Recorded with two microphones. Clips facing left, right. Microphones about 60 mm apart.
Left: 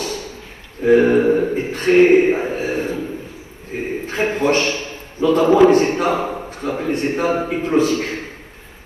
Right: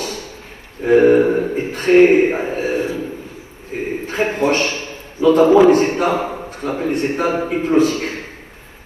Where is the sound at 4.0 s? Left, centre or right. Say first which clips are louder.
Even; right.